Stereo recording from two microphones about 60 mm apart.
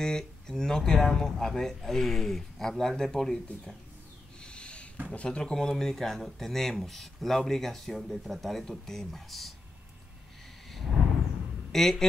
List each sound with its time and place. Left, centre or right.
0.0 s speech: centre
4.4 s a sound: centre
5.1 s speech: centre
5.4 s speech: centre
10.7 s a sound: centre
11.7 s speech: centre